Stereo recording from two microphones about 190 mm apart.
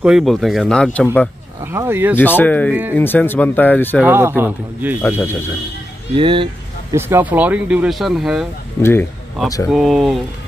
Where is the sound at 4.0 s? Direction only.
10° right (ahead or behind).